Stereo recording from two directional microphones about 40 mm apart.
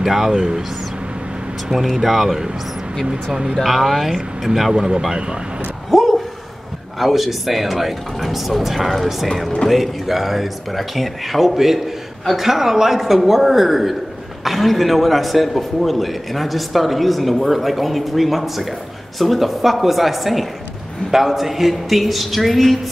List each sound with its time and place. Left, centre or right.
0.0 s speech: centre
1.7 s a man's voice: centre
3.1 s speech: centre
3.5 s a man's voice: centre
4.7 s speech: centre
5.9 s a sound: centre
7.0 s a man's voice: centre